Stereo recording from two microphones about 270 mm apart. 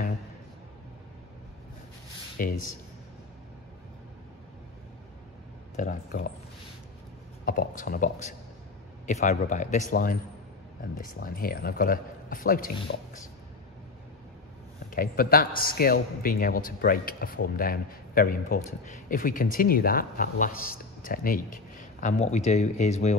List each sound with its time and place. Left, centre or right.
2.3 s speech: left
5.8 s speech: left
7.4 s speech: left
11.1 s speech: left
14.9 s speech: left